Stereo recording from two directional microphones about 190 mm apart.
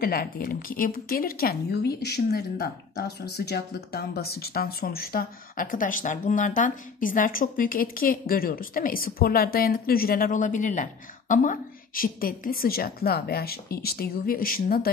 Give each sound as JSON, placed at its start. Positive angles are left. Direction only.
{"t": 0.0, "sound": "speech", "side_deg": 50}